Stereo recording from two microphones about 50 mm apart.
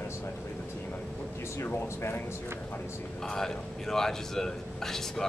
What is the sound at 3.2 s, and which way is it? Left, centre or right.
A man's voice, centre.